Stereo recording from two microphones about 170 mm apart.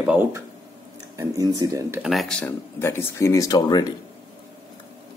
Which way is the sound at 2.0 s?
Centre (ahead or behind).